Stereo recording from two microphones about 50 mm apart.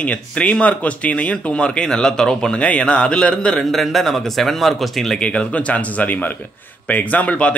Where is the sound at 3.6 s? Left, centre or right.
Centre.